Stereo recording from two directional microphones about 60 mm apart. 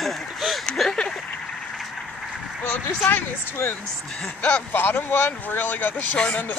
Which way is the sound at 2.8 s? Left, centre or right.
Left.